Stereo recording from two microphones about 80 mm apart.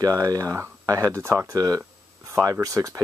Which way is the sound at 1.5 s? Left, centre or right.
Right.